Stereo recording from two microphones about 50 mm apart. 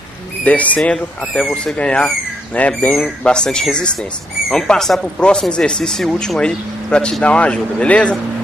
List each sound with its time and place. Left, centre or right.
0.4 s speech: left
1.8 s speech: left
3.3 s speech: centre